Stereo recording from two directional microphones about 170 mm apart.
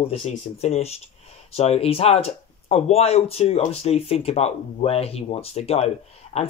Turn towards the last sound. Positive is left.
turn(degrees=40)  # may be behind; listen again after turning